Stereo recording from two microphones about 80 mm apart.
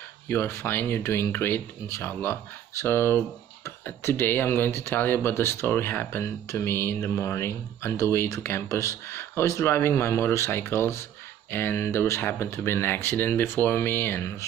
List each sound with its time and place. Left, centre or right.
0.3 s speech: left